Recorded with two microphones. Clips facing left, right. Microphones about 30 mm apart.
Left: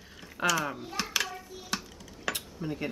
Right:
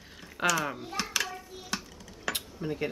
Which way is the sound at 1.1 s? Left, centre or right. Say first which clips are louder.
Even; centre.